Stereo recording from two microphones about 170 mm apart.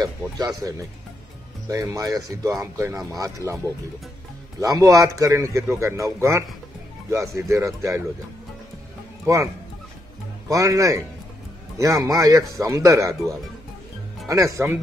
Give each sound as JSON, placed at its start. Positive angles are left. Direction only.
{"t": 0.6, "sound": "a man's voice", "side_deg": -20}
{"t": 4.6, "sound": "a man's voice", "side_deg": -20}
{"t": 9.2, "sound": "speech", "side_deg": -20}
{"t": 10.5, "sound": "a man's voice", "side_deg": -20}